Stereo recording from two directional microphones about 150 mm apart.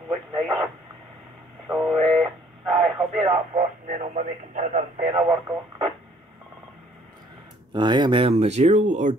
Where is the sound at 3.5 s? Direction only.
50° right (ahead or behind).